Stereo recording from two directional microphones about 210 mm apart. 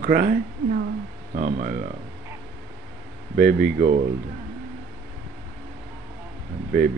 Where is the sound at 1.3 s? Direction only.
35° right (ahead or behind).